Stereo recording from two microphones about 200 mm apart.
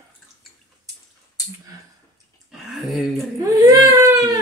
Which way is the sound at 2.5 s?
Centre (ahead or behind).